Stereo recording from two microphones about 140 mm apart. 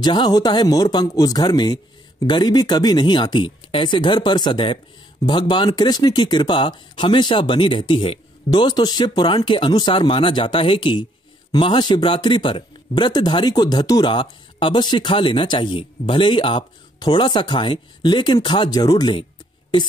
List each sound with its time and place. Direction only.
0.0 s speech: 30° left (ahead or behind)